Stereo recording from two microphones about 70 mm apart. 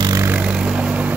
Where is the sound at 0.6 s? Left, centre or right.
Right.